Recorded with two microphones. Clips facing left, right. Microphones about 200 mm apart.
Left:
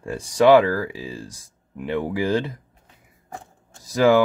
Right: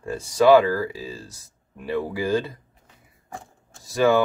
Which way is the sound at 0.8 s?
15° left (ahead or behind).